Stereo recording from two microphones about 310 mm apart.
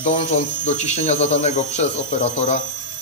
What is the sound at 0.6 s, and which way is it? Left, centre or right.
A man's voice, left.